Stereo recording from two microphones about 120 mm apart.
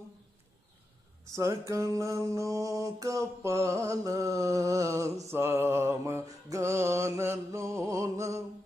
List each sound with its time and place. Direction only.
1.3 s mantra: 25° right (ahead or behind)